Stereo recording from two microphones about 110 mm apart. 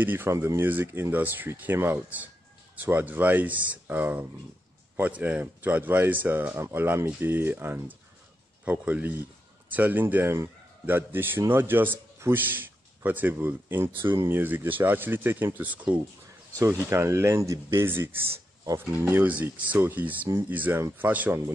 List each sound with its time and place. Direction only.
0.0 s speech: 20° right (ahead or behind)
16.9 s speech: 25° right (ahead or behind)